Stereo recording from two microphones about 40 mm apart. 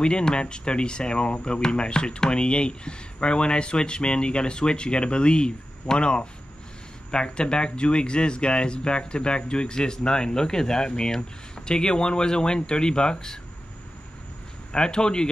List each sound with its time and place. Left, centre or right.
0.0 s speech: left
14.7 s speech: left